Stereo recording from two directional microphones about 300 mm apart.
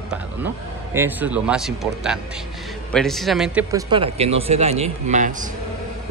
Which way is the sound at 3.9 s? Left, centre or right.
Centre.